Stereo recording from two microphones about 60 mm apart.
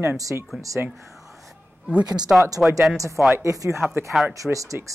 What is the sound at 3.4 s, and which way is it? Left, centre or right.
Speech, right.